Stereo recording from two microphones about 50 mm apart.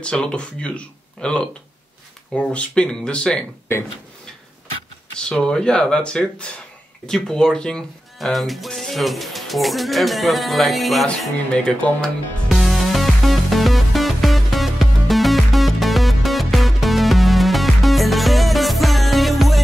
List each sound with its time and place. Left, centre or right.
0.0 s speech: centre
5.3 s speech: centre
7.1 s speech: centre
8.2 s speech: centre
11.6 s speech: centre
12.4 s music: centre